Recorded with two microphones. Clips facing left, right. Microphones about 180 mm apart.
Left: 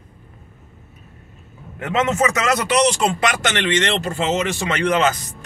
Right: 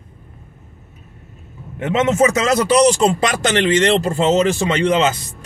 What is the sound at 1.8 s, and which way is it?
A man's voice, 25° right (ahead or behind).